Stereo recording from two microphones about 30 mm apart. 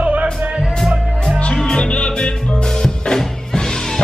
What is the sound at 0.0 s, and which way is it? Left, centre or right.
Music, right.